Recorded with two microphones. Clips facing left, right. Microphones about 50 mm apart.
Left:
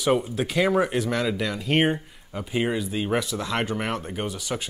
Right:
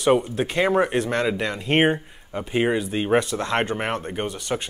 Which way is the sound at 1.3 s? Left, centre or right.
Right.